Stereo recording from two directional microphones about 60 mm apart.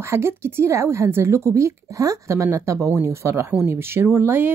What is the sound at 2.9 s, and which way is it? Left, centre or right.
A woman's voice, right.